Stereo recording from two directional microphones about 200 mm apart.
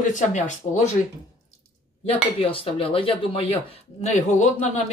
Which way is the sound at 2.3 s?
30° left (ahead or behind).